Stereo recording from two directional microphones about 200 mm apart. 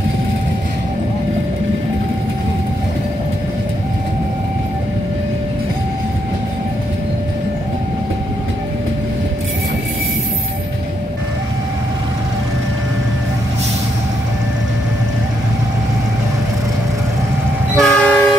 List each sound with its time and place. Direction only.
17.7 s train: 5° left (ahead or behind)